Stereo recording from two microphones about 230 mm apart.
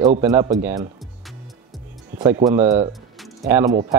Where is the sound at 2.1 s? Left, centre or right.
Centre.